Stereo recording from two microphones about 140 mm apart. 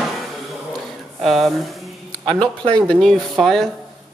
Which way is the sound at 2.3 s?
35° right (ahead or behind).